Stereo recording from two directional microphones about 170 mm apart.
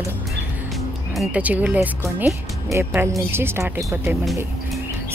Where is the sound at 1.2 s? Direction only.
10° right (ahead or behind).